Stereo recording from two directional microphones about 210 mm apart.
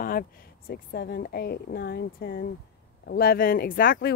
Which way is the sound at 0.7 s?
50° left (ahead or behind).